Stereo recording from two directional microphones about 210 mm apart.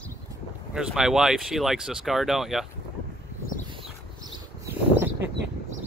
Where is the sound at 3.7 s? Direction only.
25° right (ahead or behind).